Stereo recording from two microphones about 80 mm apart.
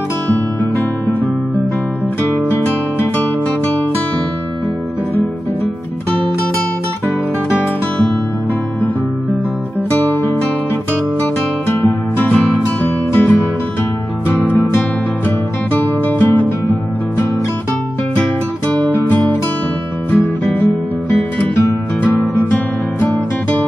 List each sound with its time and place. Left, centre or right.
12.8 s music: left
16.1 s music: left
22.0 s music: left